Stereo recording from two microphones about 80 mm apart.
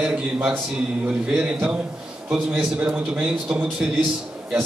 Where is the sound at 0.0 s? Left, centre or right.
Centre.